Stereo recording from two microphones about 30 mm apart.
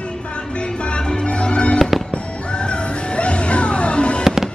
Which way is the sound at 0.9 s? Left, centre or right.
Left.